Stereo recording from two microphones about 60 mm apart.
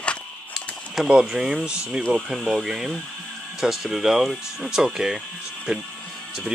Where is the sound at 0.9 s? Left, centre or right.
Centre.